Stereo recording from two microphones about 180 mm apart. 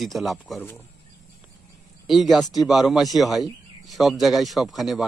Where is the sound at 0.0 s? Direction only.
Centre (ahead or behind).